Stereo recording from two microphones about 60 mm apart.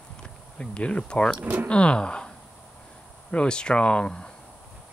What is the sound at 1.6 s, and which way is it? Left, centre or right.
Speech, centre.